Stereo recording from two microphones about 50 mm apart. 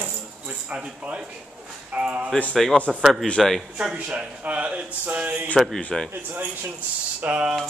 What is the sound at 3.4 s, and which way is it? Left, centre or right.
Speech, centre.